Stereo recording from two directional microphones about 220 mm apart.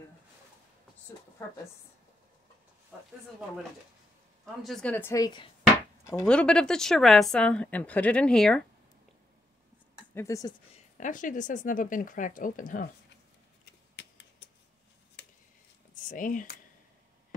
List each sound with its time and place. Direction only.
2.9 s a woman's voice: 5° left (ahead or behind)
4.6 s a woman's voice: 5° left (ahead or behind)
6.0 s a woman's voice: 5° left (ahead or behind)
10.1 s a woman's voice: 15° left (ahead or behind)
11.0 s speech: 35° left (ahead or behind)
13.9 s a sound: 55° left (ahead or behind)
15.9 s speech: 35° left (ahead or behind)